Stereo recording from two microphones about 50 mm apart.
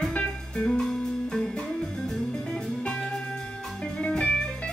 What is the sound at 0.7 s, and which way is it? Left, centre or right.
Music, centre.